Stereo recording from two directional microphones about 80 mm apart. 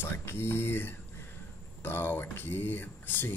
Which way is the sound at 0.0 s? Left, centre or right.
Left.